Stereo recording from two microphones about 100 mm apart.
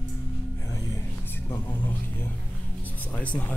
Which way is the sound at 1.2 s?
20° left (ahead or behind).